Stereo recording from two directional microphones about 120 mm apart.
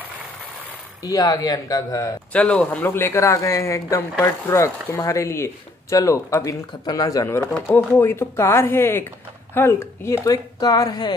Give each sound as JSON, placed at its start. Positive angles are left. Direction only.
{"t": 1.0, "sound": "speech", "side_deg": 30}
{"t": 2.3, "sound": "speech", "side_deg": 10}
{"t": 7.2, "sound": "speech", "side_deg": 20}